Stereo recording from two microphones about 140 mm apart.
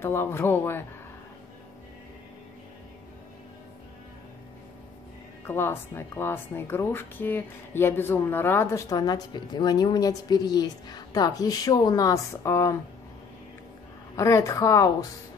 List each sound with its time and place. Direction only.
0.0 s speech: 15° left (ahead or behind)
5.4 s speech: 15° left (ahead or behind)
14.1 s speech: 20° left (ahead or behind)